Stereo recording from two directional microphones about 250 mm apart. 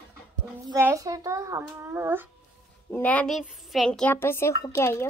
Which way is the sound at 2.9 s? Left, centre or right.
Centre.